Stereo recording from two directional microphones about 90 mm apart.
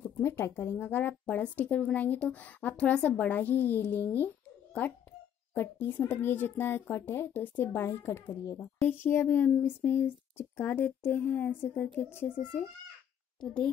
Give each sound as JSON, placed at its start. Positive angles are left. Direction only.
{"t": 0.2, "sound": "speech", "side_deg": 30}
{"t": 5.6, "sound": "speech", "side_deg": 20}
{"t": 13.4, "sound": "a woman's voice", "side_deg": 10}